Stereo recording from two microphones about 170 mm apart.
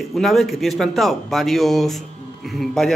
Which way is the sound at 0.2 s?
Centre (ahead or behind).